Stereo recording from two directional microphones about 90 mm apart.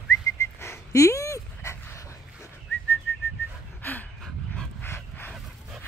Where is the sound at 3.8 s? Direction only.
20° left (ahead or behind).